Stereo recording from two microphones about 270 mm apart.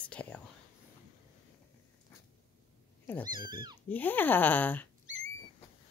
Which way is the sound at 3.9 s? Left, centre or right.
Centre.